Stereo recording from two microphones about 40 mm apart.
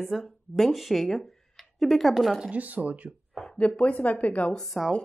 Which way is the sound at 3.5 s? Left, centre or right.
Left.